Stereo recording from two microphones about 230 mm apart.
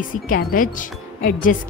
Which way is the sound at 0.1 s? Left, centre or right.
Left.